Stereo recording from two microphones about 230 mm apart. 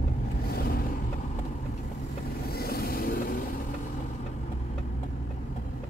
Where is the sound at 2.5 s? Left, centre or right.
Left.